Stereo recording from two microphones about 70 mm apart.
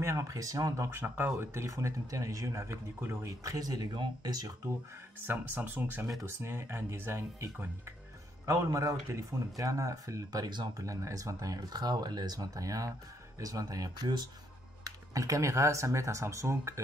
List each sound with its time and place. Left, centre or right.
0.0 s speech: right
1.0 s speech: right
3.3 s speech: right
5.2 s speech: right
8.7 s speech: right
10.8 s speech: right
14.9 s speech: right